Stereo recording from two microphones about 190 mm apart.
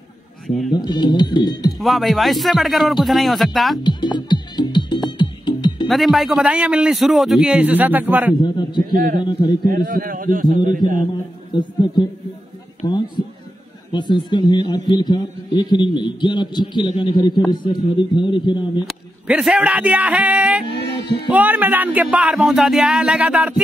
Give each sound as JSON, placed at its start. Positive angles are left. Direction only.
{"t": 0.7, "sound": "a man's voice", "side_deg": 25}
{"t": 1.7, "sound": "a man's voice", "side_deg": 0}
{"t": 3.8, "sound": "music", "side_deg": 25}
{"t": 5.9, "sound": "a man's voice", "side_deg": 0}
{"t": 8.4, "sound": "a man's voice", "side_deg": 25}
{"t": 8.9, "sound": "a man's voice", "side_deg": -50}
{"t": 9.2, "sound": "a man's voice", "side_deg": 25}
{"t": 9.7, "sound": "a man's voice", "side_deg": -50}
{"t": 11.5, "sound": "a man's voice", "side_deg": 25}
{"t": 18.9, "sound": "speech", "side_deg": -5}
{"t": 20.7, "sound": "a sound", "side_deg": 60}
{"t": 21.3, "sound": "speech", "side_deg": -10}